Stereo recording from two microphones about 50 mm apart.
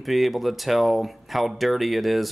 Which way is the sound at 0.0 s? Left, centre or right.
Centre.